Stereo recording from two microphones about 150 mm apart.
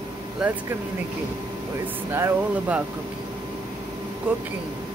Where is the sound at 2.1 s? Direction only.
15° right (ahead or behind).